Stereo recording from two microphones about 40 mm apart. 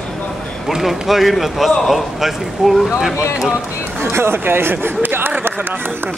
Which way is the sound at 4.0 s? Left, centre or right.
Right.